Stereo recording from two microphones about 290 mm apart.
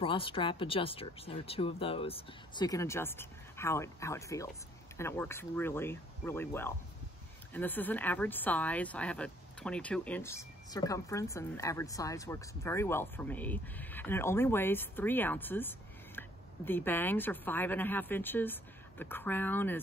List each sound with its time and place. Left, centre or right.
0.0 s speech: centre